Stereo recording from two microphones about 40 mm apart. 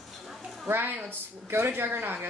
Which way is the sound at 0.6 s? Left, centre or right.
Right.